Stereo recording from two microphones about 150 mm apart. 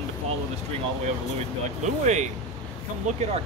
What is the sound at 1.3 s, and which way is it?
Speech, 50° right (ahead or behind).